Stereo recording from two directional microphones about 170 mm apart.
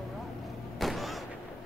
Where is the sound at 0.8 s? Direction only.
Centre (ahead or behind).